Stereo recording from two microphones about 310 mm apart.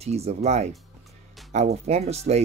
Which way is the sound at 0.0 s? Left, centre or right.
Centre.